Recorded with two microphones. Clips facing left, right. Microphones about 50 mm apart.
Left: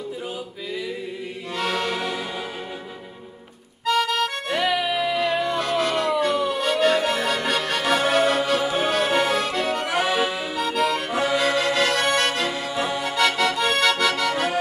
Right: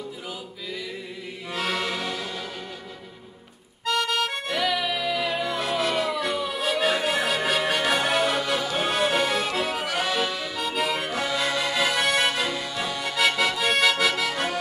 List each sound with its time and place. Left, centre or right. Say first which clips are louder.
1.6 s music: left 3 dB; centre
3.8 s accordion: left 3 dB; centre
4.5 s music: left 4 dB; centre
8.7 s accordion: even; centre
9.8 s accordion: left 4 dB; centre
10.6 s accordion: left 4 dB; centre
11.1 s accordion: left 5 dB; centre
11.3 s music: left 4 dB; centre
12.4 s accordion: left 4 dB; centre
13.0 s accordion: left 1 dB; centre